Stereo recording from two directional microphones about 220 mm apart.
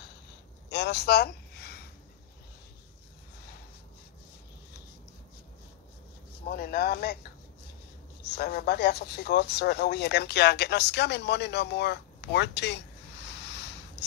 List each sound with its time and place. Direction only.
0.7 s a sound: 50° left (ahead or behind)
6.5 s speech: 45° left (ahead or behind)
8.3 s speech: 45° left (ahead or behind)